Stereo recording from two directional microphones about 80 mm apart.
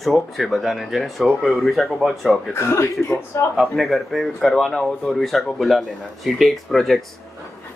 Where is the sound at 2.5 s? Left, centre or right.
Left.